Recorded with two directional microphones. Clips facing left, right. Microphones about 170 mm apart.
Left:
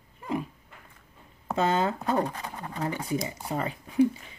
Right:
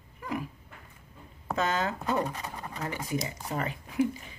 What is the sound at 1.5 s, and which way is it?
Speech, 30° left (ahead or behind).